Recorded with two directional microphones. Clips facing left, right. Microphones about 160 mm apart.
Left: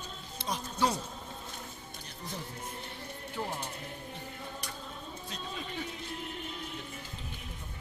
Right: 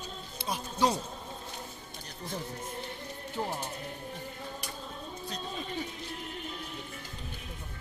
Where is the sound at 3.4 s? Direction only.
35° right (ahead or behind).